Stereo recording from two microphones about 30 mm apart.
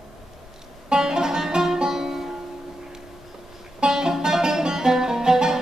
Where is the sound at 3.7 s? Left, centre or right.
Right.